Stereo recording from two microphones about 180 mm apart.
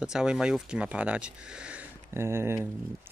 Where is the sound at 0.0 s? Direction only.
5° right (ahead or behind).